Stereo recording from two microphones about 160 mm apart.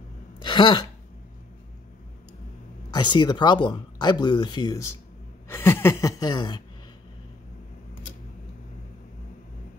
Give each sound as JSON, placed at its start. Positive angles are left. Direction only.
{"t": 0.4, "sound": "a sound", "side_deg": 30}
{"t": 2.9, "sound": "speech", "side_deg": 30}
{"t": 5.5, "sound": "speech", "side_deg": 15}